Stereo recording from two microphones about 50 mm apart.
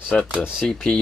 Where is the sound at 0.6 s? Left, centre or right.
Centre.